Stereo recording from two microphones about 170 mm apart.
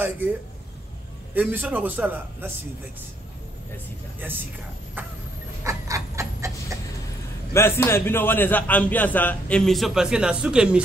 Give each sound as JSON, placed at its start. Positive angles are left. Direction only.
{"t": 1.3, "sound": "a man's voice", "side_deg": -10}
{"t": 4.2, "sound": "a man's voice", "side_deg": -10}
{"t": 5.6, "sound": "a sound", "side_deg": -20}
{"t": 7.5, "sound": "a man's voice", "side_deg": 15}